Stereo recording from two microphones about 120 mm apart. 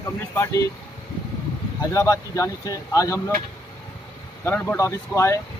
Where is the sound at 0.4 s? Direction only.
25° left (ahead or behind).